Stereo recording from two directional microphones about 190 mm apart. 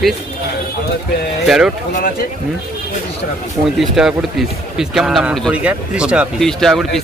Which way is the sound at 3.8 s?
5° right (ahead or behind).